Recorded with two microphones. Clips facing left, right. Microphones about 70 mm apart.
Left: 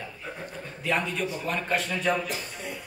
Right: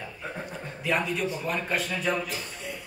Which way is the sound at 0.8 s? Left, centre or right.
Centre.